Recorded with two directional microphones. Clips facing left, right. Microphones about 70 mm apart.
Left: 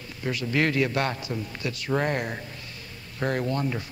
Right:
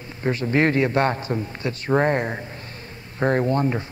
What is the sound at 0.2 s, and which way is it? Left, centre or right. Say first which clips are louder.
A man's voice: right 5 dB; right.